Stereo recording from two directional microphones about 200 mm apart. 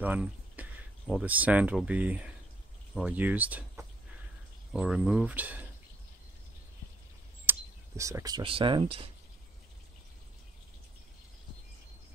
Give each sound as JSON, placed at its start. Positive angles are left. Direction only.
{"t": 0.0, "sound": "speech", "side_deg": -10}
{"t": 7.4, "sound": "speech", "side_deg": -15}